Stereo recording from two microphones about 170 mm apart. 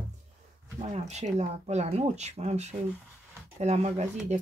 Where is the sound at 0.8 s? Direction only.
40° right (ahead or behind).